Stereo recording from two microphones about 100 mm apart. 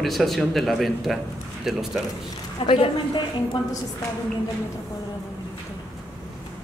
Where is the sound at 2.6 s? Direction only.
70° left (ahead or behind).